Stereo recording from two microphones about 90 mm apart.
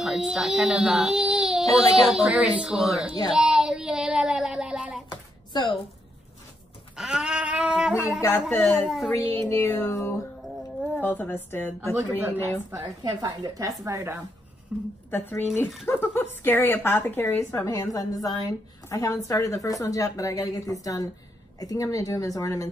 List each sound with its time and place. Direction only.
0.0 s speech: 5° right (ahead or behind)
2.7 s speech: centre (ahead or behind)
3.3 s child singing: 5° right (ahead or behind)
5.1 s a sound: 55° left (ahead or behind)
7.0 s a sound: 10° right (ahead or behind)
8.7 s speech: centre (ahead or behind)
9.1 s a woman's voice: 25° left (ahead or behind)
11.0 s a woman's voice: 20° left (ahead or behind)
12.2 s a woman's voice: 20° right (ahead or behind)
12.7 s a woman's voice: 45° right (ahead or behind)
14.7 s speech: 10° right (ahead or behind)
15.0 s a woman's voice: 25° left (ahead or behind)
17.7 s a woman's voice: 45° left (ahead or behind)